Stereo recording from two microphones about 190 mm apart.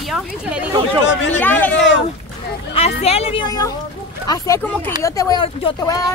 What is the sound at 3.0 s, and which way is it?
A woman's voice, 30° left (ahead or behind).